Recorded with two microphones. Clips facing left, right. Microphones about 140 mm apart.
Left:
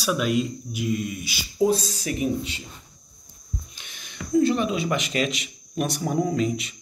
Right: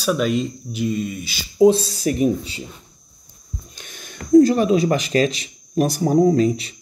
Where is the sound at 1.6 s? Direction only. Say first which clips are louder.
Right 9 dB; 30° right (ahead or behind).